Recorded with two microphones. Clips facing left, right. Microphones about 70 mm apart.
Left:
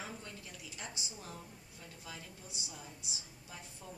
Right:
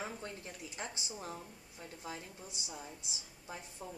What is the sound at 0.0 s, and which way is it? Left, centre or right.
A woman's voice, right.